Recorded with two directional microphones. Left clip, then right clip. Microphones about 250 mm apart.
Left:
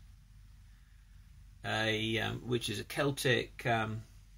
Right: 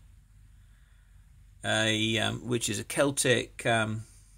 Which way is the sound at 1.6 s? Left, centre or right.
Right.